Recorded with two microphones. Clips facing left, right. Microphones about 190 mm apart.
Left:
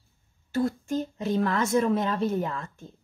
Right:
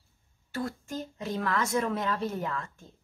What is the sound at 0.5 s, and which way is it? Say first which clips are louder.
A woman's voice: left 8 dB; 25° left (ahead or behind).